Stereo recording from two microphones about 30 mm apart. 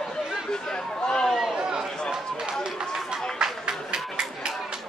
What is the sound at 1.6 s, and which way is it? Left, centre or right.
Chatter, right.